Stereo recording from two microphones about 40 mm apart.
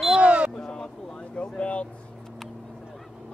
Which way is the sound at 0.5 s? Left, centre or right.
Centre.